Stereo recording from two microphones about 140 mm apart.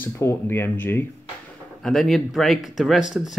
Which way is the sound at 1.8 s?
Centre (ahead or behind).